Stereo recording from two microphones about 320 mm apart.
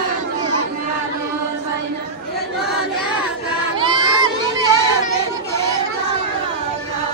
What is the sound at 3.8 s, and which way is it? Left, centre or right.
Crowd, centre.